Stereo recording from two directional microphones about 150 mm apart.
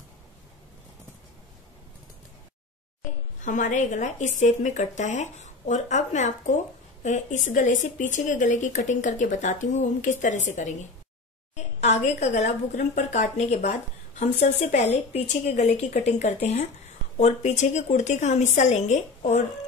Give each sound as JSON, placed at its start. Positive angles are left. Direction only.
{"t": 3.4, "sound": "a woman's voice", "side_deg": 55}